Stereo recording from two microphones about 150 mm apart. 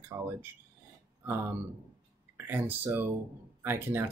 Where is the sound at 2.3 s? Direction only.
15° right (ahead or behind).